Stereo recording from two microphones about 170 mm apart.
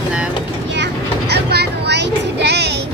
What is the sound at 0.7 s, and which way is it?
Vehicle, 85° right.